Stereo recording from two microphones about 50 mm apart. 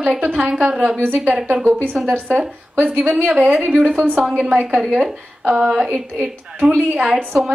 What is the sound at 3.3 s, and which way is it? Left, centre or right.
Speech, right.